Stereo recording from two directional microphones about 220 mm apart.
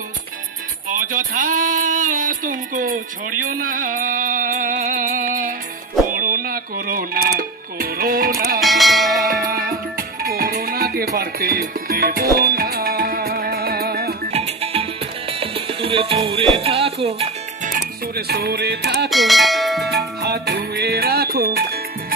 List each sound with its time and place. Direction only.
0.8 s music: 35° right (ahead or behind)
8.5 s bell: centre (ahead or behind)
9.5 s music: 40° right (ahead or behind)
14.3 s music: 30° right (ahead or behind)
17.6 s music: 40° right (ahead or behind)
19.0 s speech: centre (ahead or behind)
19.9 s music: 50° right (ahead or behind)